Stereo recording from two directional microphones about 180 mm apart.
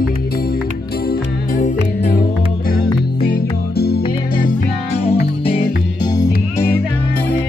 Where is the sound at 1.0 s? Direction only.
45° left (ahead or behind).